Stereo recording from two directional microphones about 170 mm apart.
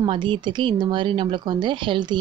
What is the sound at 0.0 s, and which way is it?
Speech, 30° right (ahead or behind).